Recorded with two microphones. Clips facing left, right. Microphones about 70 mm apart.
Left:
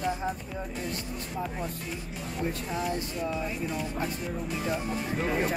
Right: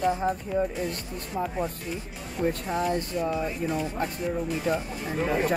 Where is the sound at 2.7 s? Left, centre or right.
Right.